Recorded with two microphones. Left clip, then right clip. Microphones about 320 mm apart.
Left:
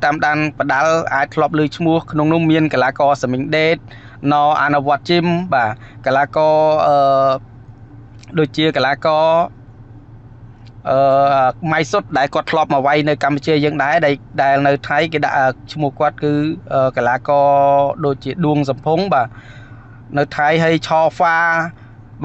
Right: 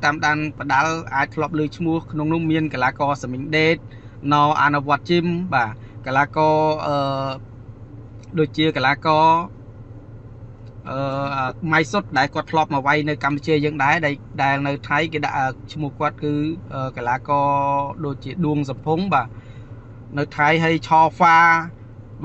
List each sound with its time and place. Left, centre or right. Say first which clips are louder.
0.0 s speech: left 4 dB; left
10.8 s speech: left 13 dB; left